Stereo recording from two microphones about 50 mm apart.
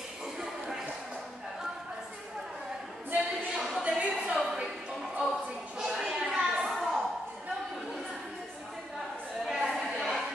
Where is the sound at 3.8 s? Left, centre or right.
Right.